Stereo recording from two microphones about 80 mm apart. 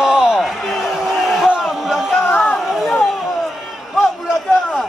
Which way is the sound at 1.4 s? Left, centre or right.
Centre.